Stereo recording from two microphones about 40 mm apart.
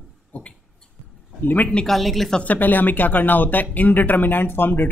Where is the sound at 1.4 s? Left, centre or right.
Left.